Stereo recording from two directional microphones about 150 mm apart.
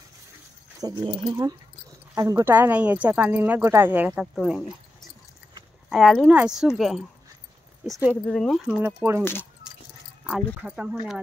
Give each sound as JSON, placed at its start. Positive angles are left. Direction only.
{"t": 0.7, "sound": "speech", "side_deg": -30}
{"t": 5.9, "sound": "speech", "side_deg": 0}
{"t": 8.8, "sound": "speech", "side_deg": -15}
{"t": 9.2, "sound": "speech", "side_deg": 15}
{"t": 10.2, "sound": "speech", "side_deg": -5}